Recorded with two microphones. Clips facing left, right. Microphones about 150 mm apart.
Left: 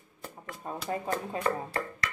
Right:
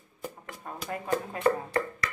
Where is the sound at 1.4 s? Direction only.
20° right (ahead or behind).